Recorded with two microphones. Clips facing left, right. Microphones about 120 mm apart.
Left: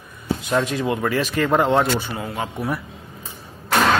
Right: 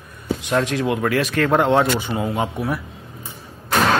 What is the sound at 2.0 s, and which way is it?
Speech, 20° right (ahead or behind).